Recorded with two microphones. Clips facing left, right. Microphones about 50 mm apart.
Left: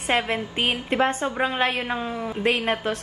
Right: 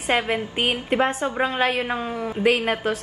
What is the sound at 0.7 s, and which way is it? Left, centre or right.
A woman's voice, centre.